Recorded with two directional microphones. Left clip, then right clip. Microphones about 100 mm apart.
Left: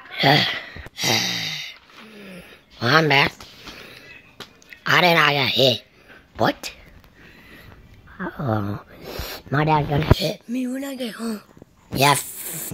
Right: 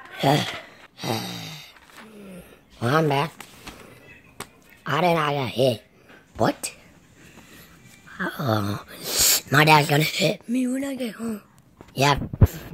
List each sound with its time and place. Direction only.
0.1 s speech: 5° right (ahead or behind)
0.9 s a sound: 5° left (ahead or behind)
4.8 s speech: 5° right (ahead or behind)
8.2 s speech: 10° left (ahead or behind); by 10.0 s 5° right (ahead or behind)
10.1 s speech: 25° right (ahead or behind)
11.1 s speech: 5° left (ahead or behind)